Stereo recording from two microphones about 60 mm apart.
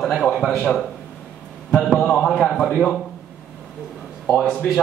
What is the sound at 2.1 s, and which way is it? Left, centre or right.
Speech, centre.